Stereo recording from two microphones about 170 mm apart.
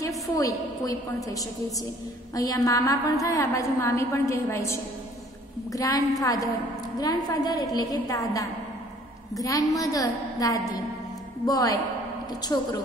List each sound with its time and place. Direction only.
0.4 s a woman's voice: 20° left (ahead or behind)